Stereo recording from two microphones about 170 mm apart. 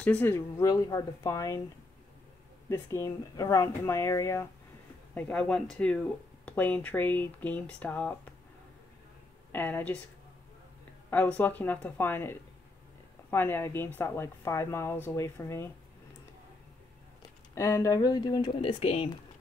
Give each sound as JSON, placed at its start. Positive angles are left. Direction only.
{"t": 0.0, "sound": "speech", "side_deg": 10}
{"t": 2.7, "sound": "speech", "side_deg": 15}
{"t": 5.1, "sound": "speech", "side_deg": 5}
{"t": 9.5, "sound": "speech", "side_deg": 10}
{"t": 11.1, "sound": "speech", "side_deg": 10}
{"t": 17.6, "sound": "speech", "side_deg": 15}